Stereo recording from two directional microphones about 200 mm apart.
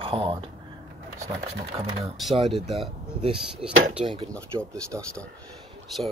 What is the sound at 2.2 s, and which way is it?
Speech, centre (ahead or behind).